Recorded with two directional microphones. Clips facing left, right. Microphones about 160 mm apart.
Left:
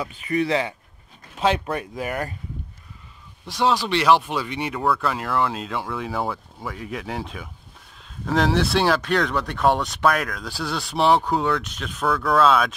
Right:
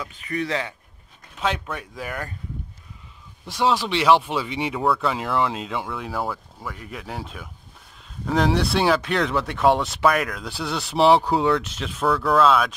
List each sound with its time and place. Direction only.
0.3 s speech: 15° left (ahead or behind)
3.4 s speech: centre (ahead or behind)
10.8 s speech: 25° right (ahead or behind)
12.2 s speech: centre (ahead or behind)